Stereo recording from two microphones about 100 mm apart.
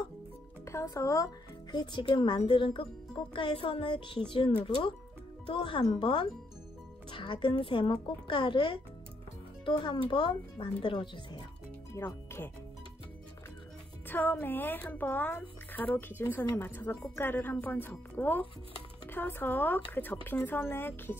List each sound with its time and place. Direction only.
0.7 s speech: 30° left (ahead or behind); by 11.4 s 50° left (ahead or behind)
11.9 s speech: 25° left (ahead or behind)
14.0 s speech: 20° left (ahead or behind)